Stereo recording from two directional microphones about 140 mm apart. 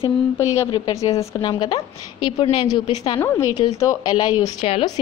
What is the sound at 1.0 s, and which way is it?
A woman's voice, 25° left (ahead or behind).